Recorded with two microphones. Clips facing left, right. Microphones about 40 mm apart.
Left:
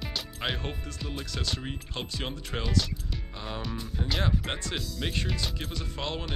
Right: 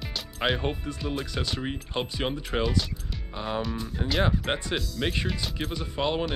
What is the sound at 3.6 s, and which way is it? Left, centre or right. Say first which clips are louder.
Speech: right 4 dB; centre.